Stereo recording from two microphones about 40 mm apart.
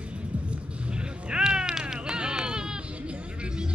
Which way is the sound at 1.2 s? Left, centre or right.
Right.